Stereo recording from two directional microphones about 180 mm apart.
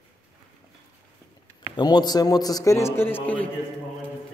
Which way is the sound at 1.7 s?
25° left (ahead or behind).